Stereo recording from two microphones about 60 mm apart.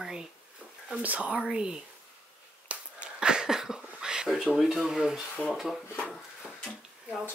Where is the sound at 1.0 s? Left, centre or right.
Right.